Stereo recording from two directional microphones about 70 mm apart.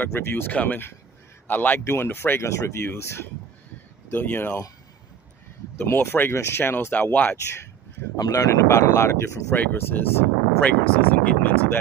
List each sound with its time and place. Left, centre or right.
0.1 s speech: left
4.1 s speech: left
5.8 s speech: left
8.2 s speech: left